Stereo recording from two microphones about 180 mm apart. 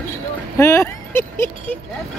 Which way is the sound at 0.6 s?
15° left (ahead or behind).